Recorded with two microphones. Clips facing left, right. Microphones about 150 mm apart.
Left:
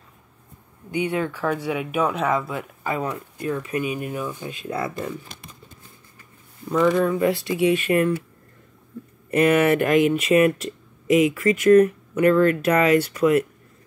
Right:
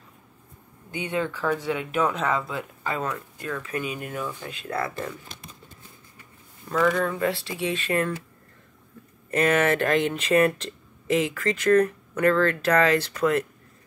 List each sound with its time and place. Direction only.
0.9 s speech: 15° left (ahead or behind)
6.8 s speech: 15° left (ahead or behind)
9.3 s speech: 10° left (ahead or behind)